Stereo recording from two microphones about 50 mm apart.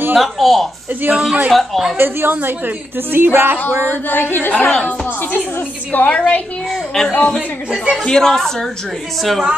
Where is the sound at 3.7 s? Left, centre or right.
Right.